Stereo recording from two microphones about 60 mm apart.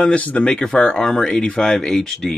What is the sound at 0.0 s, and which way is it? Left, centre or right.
Speech, left.